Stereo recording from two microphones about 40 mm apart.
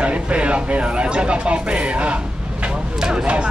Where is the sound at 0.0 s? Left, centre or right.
Right.